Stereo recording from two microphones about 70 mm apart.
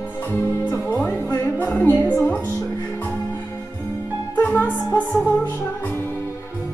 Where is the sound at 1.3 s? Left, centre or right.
Left.